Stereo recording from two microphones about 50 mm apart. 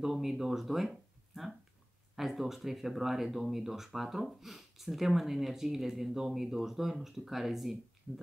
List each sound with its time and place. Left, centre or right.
0.0 s speech: centre